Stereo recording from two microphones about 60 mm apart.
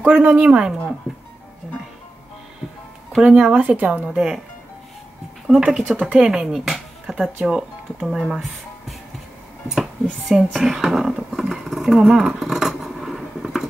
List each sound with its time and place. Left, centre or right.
0.0 s speech: right
3.2 s speech: centre
5.7 s speech: centre
5.9 s speech: right; by 8.9 s centre
10.3 s speech: centre
12.0 s a sound: centre